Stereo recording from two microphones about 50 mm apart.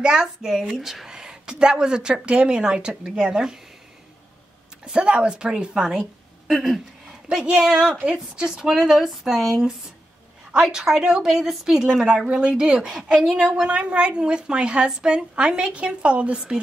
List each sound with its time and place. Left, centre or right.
0.0 s a woman's voice: centre
4.8 s a woman's voice: centre
7.2 s a woman's voice: centre
13.7 s a woman's voice: right